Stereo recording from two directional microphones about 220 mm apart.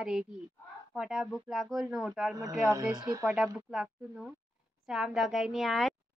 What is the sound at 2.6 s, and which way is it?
Speech, 15° right (ahead or behind).